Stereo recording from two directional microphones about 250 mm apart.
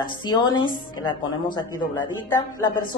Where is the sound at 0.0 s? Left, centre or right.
Centre.